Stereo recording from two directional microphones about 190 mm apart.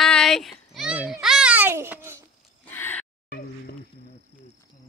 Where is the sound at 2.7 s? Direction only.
10° left (ahead or behind).